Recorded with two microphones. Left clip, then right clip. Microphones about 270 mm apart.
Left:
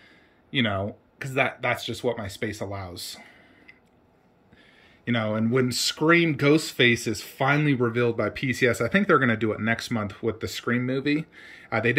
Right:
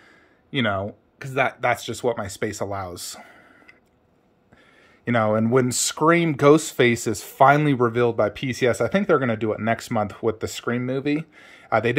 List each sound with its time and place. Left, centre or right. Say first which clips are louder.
0.5 s speech: right 2 dB; centre
3.0 s a sound: right 1 dB; centre
5.0 s speech: right 6 dB; centre
7.0 s speech: right 3 dB; right
7.6 s speech: right 4 dB; centre